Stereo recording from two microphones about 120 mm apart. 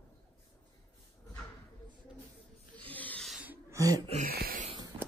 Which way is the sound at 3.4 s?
15° right (ahead or behind).